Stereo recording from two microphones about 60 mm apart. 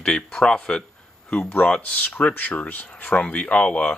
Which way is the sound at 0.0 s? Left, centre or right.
Centre.